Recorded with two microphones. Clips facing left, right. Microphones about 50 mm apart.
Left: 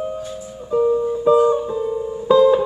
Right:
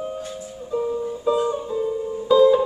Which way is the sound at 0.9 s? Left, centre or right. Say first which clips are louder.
Left 8 dB; left.